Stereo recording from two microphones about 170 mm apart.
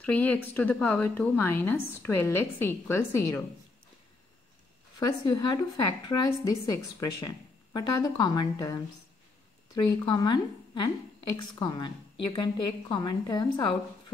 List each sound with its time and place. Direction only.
0.0 s a woman's voice: 10° left (ahead or behind)
4.9 s a woman's voice: 20° left (ahead or behind)